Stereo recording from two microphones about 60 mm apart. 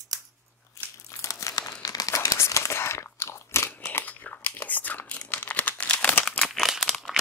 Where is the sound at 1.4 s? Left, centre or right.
Left.